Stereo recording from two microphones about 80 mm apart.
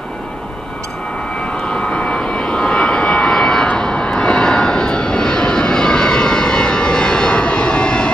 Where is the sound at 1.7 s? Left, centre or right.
Centre.